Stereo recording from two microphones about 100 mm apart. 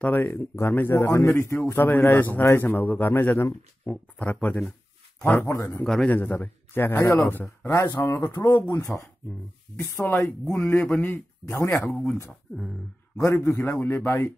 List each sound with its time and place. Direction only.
0.0 s a man's voice: 20° left (ahead or behind)
5.9 s a man's voice: 10° left (ahead or behind); by 11.7 s 25° left (ahead or behind)
13.2 s a man's voice: 25° left (ahead or behind)